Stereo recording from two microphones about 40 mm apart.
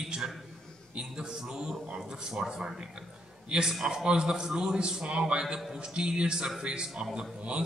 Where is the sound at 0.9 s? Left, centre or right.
Right.